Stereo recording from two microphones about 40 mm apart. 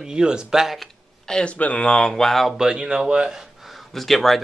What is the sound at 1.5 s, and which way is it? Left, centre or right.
Speech, left.